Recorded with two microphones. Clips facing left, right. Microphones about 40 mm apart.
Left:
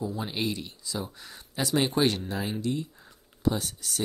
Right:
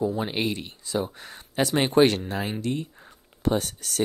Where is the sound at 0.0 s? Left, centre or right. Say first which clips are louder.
Right 5 dB; right.